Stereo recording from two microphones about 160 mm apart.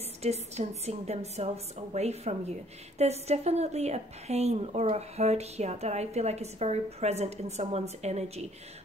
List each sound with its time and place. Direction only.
0.2 s a woman's voice: 40° right (ahead or behind)